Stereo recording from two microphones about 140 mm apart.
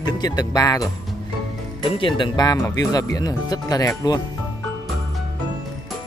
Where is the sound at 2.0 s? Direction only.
35° left (ahead or behind).